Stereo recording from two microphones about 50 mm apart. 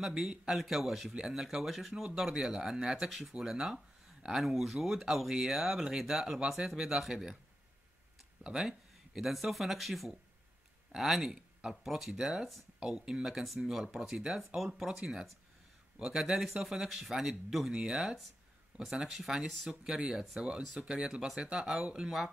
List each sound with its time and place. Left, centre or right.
0.0 s speech: centre
8.5 s speech: centre
19.7 s speech: centre